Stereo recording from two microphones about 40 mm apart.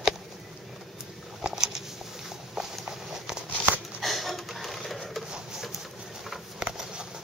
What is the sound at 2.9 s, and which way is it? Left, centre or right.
Clip-clop, centre.